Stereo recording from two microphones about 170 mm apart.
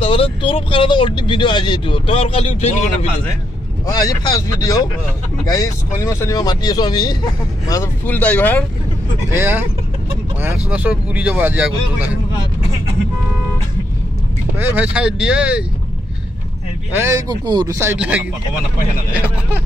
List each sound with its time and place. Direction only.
0.0 s speech: 30° left (ahead or behind)
3.8 s speech: 25° left (ahead or behind)
9.3 s speech: 15° right (ahead or behind)
14.6 s speech: 10° right (ahead or behind)
16.9 s speech: 15° right (ahead or behind)